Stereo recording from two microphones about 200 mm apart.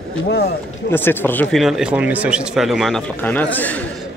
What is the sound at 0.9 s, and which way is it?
Speech, 10° left (ahead or behind).